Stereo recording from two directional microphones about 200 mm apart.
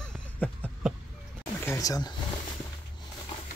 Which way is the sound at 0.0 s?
5° left (ahead or behind).